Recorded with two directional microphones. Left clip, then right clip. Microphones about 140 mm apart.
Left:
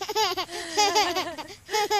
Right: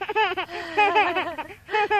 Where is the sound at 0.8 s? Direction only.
50° left (ahead or behind).